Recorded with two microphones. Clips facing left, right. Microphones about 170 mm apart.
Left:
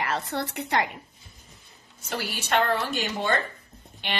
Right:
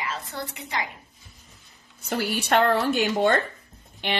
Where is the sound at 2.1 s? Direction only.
55° right (ahead or behind).